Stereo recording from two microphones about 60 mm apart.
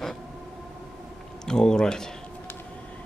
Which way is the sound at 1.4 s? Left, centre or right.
Centre.